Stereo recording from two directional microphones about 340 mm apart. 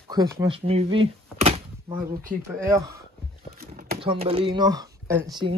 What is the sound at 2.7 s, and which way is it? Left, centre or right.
Speech, centre.